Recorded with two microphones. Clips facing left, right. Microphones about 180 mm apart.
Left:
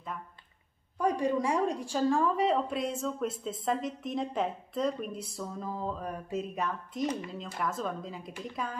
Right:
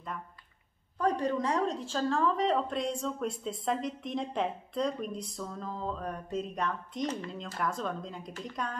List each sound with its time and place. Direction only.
0.9 s a woman's voice: 10° left (ahead or behind)